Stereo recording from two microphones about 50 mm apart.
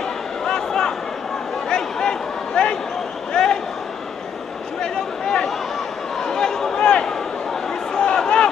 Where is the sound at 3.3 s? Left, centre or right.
Centre.